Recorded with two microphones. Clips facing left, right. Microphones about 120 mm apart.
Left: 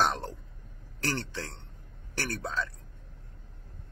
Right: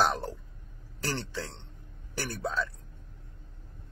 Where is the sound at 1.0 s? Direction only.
10° right (ahead or behind).